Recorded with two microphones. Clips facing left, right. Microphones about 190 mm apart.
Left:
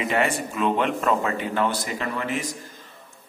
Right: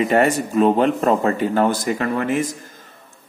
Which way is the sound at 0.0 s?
45° right (ahead or behind).